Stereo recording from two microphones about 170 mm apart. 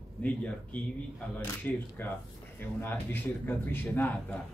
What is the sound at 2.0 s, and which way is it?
Speech, 15° left (ahead or behind).